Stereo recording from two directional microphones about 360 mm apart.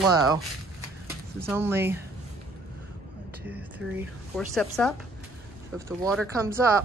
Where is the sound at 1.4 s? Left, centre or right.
Centre.